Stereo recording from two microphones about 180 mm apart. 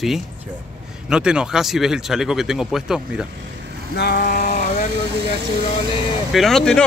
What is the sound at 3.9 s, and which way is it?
Vehicle, 60° left (ahead or behind).